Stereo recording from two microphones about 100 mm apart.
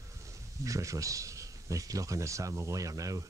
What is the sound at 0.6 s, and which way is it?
Speech, 35° right (ahead or behind).